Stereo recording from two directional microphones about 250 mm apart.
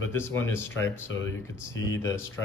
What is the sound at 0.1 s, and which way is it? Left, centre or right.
Speech, centre.